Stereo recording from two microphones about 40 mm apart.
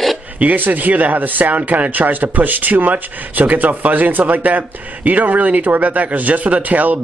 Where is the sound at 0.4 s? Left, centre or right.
Right.